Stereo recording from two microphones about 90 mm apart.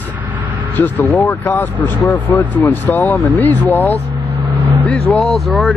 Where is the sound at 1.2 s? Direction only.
30° left (ahead or behind).